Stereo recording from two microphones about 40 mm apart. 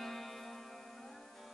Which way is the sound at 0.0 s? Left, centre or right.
Centre.